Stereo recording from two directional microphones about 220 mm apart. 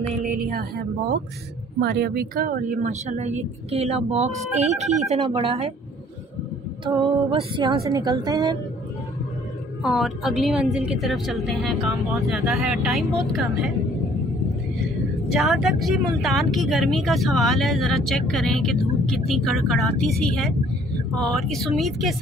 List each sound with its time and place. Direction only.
0.3 s speech: 40° right (ahead or behind)
1.8 s a woman's voice: 45° right (ahead or behind); by 5.7 s 25° right (ahead or behind)
6.8 s a woman's voice: 20° right (ahead or behind)
9.8 s speech: centre (ahead or behind)
15.3 s speech: centre (ahead or behind)